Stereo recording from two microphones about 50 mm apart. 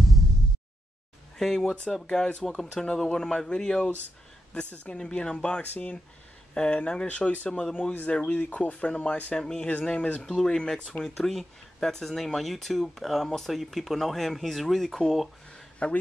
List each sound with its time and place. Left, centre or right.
1.4 s speech: centre
2.0 s speech: centre
4.9 s speech: centre
5.6 s speech: left
7.7 s speech: left
10.2 s speech: centre
15.5 s a sound: left